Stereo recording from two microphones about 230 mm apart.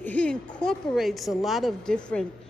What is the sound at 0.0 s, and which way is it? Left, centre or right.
A woman's voice, centre.